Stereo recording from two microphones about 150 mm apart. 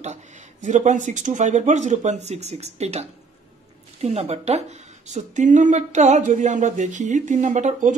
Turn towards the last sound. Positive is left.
turn(degrees=-55)  # may be behind; listen again after turning